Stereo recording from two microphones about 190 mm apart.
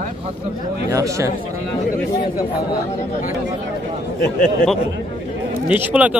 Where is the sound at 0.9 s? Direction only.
15° right (ahead or behind).